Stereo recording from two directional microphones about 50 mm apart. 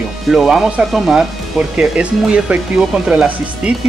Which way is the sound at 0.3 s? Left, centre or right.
Centre.